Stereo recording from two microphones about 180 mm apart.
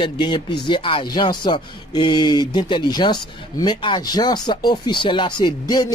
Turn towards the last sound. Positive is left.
turn(degrees=25)  # may be behind; listen again after turning